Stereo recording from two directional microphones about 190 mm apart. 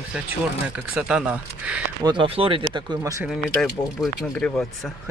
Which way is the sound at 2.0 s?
25° right (ahead or behind).